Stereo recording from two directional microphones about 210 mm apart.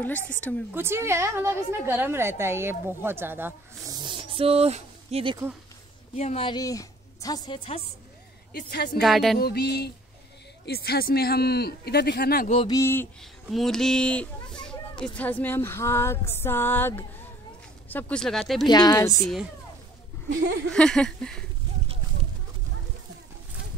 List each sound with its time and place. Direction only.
0.7 s a woman's voice: 10° right (ahead or behind)
6.1 s a woman's voice: 30° left (ahead or behind)
8.5 s speech: 45° left (ahead or behind)
9.0 s speech: centre (ahead or behind)
9.4 s speech: 50° left (ahead or behind)
12.4 s a woman's voice: 25° left (ahead or behind)
12.7 s speech: 10° left (ahead or behind)
18.7 s a woman's voice: 20° left (ahead or behind)
20.7 s speech: 5° left (ahead or behind)